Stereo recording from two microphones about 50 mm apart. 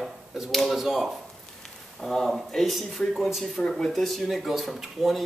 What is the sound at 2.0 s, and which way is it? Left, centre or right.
Speech, centre.